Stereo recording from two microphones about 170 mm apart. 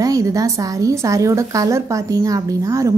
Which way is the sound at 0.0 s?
20° right (ahead or behind).